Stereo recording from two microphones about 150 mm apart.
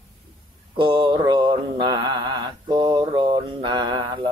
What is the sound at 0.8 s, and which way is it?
Mantra, 35° right (ahead or behind).